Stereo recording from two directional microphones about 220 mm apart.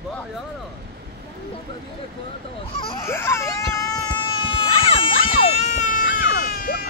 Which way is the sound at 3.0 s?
10° left (ahead or behind).